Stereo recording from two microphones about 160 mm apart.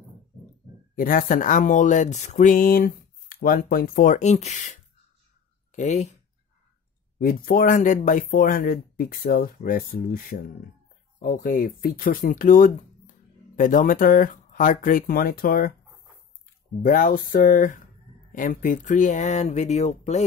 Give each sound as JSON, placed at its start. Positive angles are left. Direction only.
{"t": 0.9, "sound": "speech", "side_deg": 60}
{"t": 7.2, "sound": "speech", "side_deg": 65}
{"t": 16.8, "sound": "speech", "side_deg": 60}